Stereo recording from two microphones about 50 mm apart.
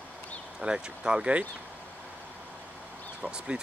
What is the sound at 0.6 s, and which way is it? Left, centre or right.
Speech, centre.